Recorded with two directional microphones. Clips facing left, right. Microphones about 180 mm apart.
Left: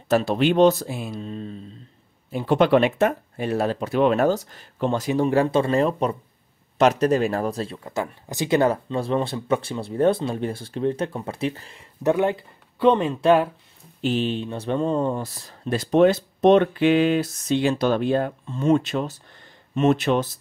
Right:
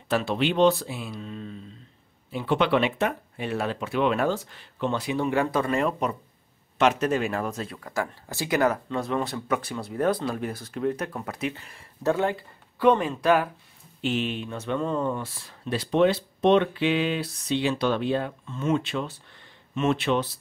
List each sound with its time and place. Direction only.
0.1 s speech: 45° left (ahead or behind)
11.7 s speech: 20° left (ahead or behind); by 20.2 s 45° left (ahead or behind)